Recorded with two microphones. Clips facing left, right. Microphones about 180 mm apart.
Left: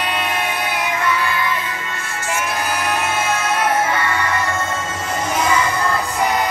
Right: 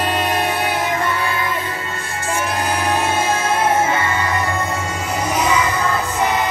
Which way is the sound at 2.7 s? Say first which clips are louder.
Right 3 dB; 30° right (ahead or behind).